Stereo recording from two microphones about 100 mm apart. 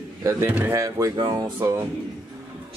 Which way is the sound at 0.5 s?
20° right (ahead or behind).